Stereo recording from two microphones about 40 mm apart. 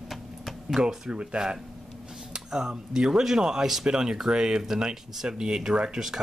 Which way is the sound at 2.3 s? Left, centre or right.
Centre.